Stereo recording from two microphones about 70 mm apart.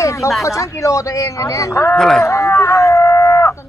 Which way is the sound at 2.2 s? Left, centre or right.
Left.